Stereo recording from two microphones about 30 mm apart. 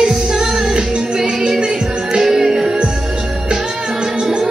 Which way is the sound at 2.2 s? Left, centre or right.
Centre.